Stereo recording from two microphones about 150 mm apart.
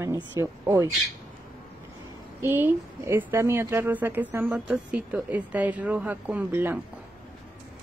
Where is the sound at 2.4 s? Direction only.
15° right (ahead or behind).